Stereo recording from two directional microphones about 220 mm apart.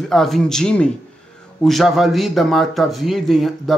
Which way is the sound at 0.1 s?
Centre (ahead or behind).